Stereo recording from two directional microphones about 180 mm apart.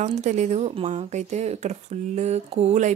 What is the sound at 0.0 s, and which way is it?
Speech, 40° right (ahead or behind).